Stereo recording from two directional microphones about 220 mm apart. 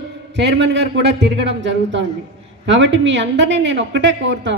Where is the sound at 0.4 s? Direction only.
50° right (ahead or behind).